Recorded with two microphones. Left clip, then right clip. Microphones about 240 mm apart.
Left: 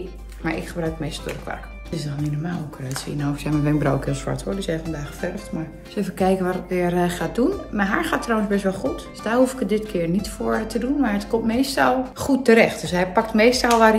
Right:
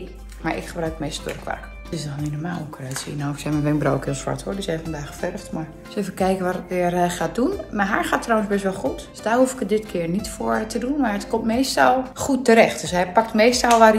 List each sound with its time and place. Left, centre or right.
0.4 s speech: centre